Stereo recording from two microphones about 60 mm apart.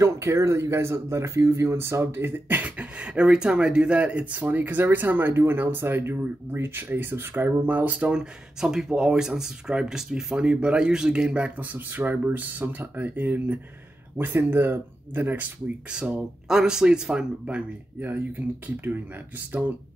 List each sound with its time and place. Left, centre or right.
0.0 s speech: right
7.6 s speech: right
8.1 s speech: centre; by 15.4 s right
15.9 s speech: centre